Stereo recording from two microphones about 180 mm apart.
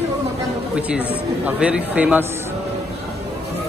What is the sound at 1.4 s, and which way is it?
Speech, 5° right (ahead or behind).